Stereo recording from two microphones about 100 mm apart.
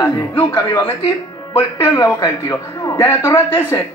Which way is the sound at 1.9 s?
35° left (ahead or behind).